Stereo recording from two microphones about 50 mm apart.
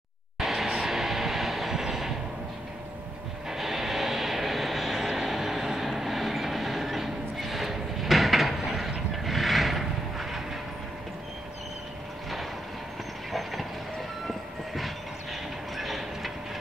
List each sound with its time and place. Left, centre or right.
0.4 s vehicle: centre
0.7 s music: centre
0.9 s music: centre
3.4 s vehicle: centre
13.3 s train: centre